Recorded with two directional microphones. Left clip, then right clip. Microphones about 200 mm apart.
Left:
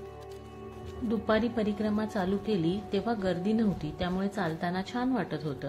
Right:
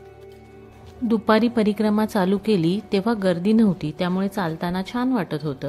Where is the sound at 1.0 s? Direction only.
40° right (ahead or behind).